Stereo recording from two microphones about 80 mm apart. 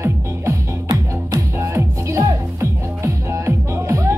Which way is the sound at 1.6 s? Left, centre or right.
Right.